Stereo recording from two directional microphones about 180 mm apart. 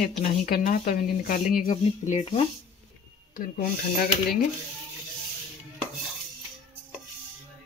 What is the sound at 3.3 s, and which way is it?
Speech, 50° left (ahead or behind).